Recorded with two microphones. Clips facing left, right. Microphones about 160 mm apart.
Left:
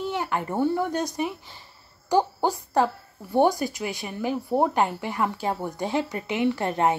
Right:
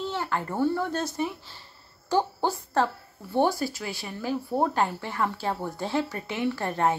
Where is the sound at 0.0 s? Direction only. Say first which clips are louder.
Left 2 dB; 15° left (ahead or behind).